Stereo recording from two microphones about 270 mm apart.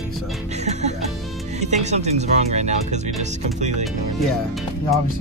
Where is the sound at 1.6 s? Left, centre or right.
Right.